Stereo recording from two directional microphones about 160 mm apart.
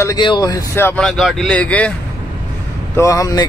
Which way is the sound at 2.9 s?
20° left (ahead or behind).